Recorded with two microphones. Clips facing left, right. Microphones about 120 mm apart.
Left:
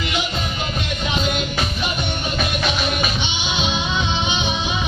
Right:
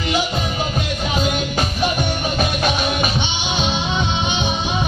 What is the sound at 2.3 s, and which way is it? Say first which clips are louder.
Music: right 2 dB; 40° right (ahead or behind).